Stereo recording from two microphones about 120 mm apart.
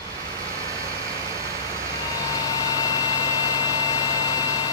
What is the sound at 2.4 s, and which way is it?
Vehicle, 35° left (ahead or behind).